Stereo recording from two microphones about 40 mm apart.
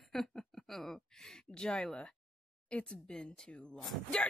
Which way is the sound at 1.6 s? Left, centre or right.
Left.